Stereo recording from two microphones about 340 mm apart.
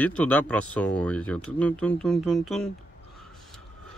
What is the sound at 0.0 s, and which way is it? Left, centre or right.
Speech, centre.